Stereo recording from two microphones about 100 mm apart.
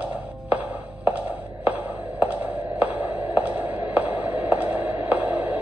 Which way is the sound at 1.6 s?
15° right (ahead or behind).